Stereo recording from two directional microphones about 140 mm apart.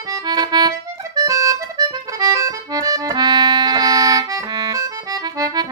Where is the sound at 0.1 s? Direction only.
30° right (ahead or behind).